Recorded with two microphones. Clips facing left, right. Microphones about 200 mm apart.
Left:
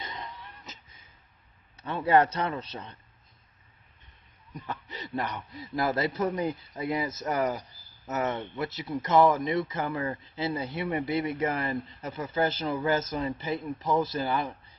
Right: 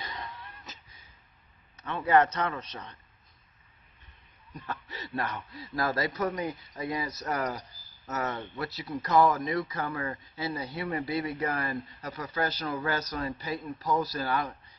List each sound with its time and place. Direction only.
0.0 s a sound: 20° left (ahead or behind)
1.8 s a man's voice: 30° left (ahead or behind)
4.5 s a man's voice: 10° left (ahead or behind)
10.1 s a man's voice: 30° left (ahead or behind)